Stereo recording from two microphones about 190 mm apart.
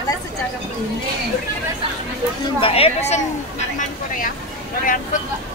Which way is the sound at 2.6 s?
30° left (ahead or behind).